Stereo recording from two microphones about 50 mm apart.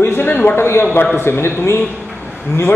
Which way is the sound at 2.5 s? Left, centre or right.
Left.